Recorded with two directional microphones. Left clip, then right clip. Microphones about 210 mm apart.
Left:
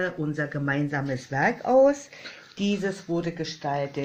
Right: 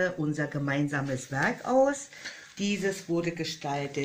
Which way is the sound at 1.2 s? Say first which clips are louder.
Left 6 dB; 35° left (ahead or behind).